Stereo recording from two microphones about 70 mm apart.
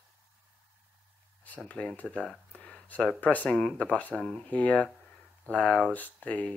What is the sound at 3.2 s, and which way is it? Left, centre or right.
Speech, left.